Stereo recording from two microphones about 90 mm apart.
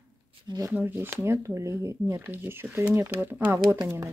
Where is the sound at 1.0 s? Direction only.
30° right (ahead or behind).